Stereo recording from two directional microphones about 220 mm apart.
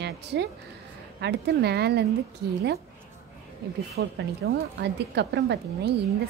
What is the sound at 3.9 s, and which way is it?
A woman's voice, 45° right (ahead or behind).